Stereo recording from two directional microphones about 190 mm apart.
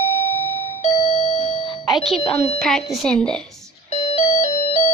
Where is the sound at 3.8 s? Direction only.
35° left (ahead or behind).